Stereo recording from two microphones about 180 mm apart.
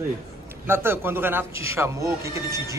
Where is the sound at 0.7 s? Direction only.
10° right (ahead or behind).